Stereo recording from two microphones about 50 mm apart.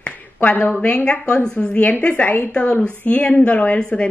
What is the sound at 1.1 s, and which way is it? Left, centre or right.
A woman's voice, centre.